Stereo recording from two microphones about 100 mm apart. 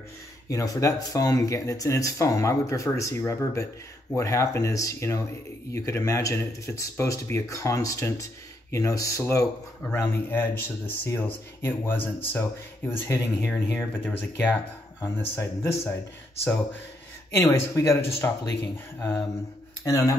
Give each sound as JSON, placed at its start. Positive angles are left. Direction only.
{"t": 0.5, "sound": "speech", "side_deg": 35}
{"t": 9.9, "sound": "speech", "side_deg": 20}
{"t": 17.3, "sound": "speech", "side_deg": 25}
{"t": 19.8, "sound": "speech", "side_deg": 35}